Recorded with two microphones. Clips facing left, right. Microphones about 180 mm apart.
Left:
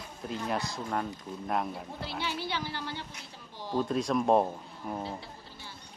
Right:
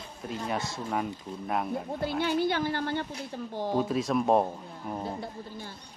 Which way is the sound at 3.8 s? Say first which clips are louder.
Even; 5° right (ahead or behind).